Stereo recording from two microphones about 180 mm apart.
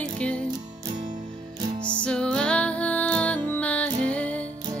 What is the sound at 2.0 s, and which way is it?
Music, 5° left (ahead or behind).